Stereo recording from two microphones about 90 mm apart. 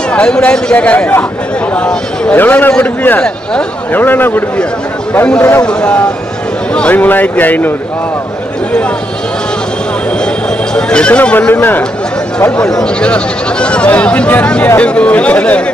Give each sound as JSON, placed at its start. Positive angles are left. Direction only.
{"t": 0.1, "sound": "speech", "side_deg": 10}
{"t": 2.3, "sound": "speech", "side_deg": 20}
{"t": 5.7, "sound": "speech", "side_deg": 10}
{"t": 10.7, "sound": "speech", "side_deg": 10}
{"t": 12.4, "sound": "speech", "side_deg": 10}